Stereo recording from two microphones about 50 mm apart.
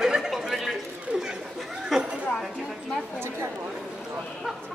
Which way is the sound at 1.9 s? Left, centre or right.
Centre.